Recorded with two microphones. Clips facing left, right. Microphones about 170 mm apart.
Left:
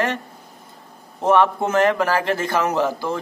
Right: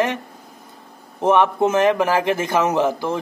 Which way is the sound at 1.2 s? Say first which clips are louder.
Right 1 dB; 15° right (ahead or behind).